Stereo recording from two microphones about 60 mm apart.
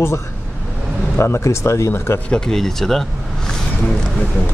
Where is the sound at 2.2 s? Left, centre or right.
Centre.